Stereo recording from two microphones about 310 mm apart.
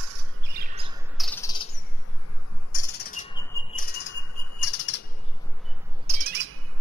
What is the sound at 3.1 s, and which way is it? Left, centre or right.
Cricket, centre.